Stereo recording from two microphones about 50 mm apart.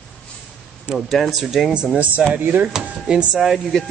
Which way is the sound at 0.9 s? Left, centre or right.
Centre.